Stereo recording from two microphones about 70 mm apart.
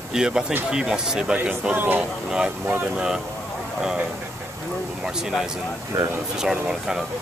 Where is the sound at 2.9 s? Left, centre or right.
Centre.